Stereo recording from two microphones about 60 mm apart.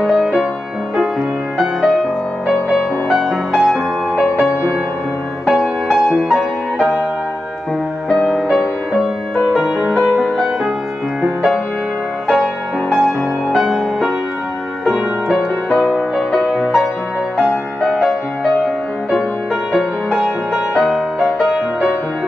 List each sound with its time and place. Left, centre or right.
0.0 s music: centre
1.6 s music: centre
3.1 s music: centre
5.5 s music: centre
8.1 s music: centre
9.5 s music: centre
10.3 s music: centre
12.9 s music: centre
16.4 s music: centre
17.4 s music: centre
20.8 s music: centre